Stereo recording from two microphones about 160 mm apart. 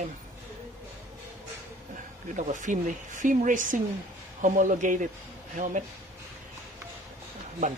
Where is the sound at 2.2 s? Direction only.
50° right (ahead or behind).